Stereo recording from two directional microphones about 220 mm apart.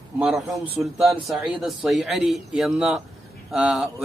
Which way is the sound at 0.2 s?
Centre (ahead or behind).